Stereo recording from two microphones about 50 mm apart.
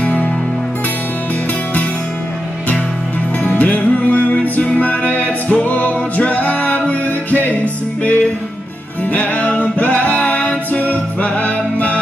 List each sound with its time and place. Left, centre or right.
0.0 s music: left
3.4 s music: left